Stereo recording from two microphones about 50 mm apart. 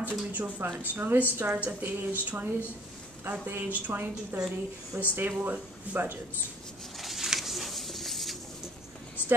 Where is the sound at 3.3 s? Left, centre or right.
Right.